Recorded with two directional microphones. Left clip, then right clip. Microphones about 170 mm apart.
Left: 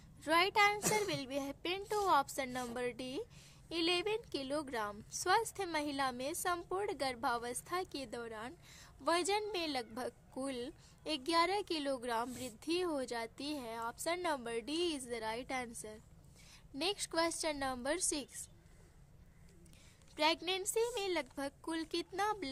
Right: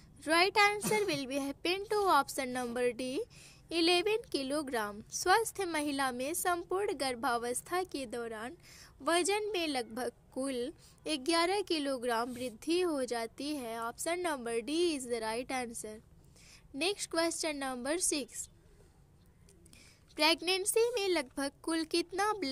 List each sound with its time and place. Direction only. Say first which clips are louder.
0.2 s a woman's voice: right 3 dB; 20° right (ahead or behind)
20.2 s a woman's voice: right 5 dB; 25° right (ahead or behind)